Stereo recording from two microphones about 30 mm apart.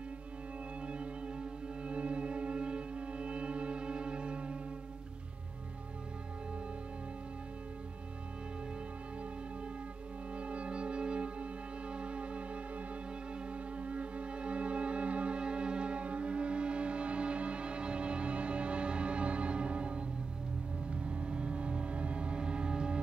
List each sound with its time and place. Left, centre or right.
0.8 s music: right
10.3 s music: right
20.9 s vehicle: right